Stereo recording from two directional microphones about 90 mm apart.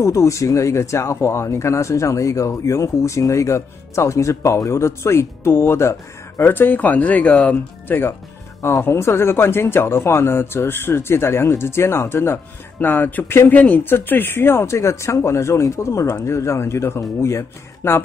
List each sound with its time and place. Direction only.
0.0 s speech: 35° left (ahead or behind)